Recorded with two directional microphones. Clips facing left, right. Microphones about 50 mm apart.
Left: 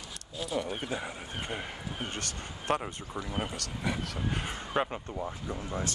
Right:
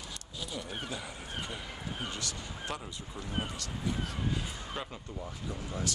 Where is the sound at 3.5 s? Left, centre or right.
Left.